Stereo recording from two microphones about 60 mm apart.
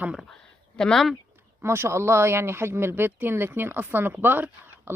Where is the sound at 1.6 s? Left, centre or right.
Right.